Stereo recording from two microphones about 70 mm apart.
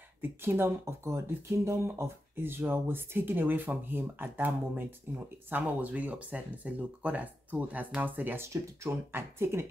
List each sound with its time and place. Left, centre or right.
0.2 s speech: right